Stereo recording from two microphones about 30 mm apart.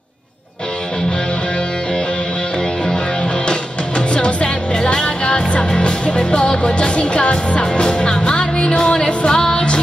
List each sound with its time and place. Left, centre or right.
4.1 s music: left